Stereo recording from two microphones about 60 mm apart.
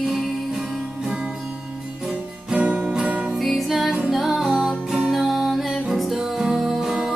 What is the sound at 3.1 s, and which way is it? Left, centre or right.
Music, right.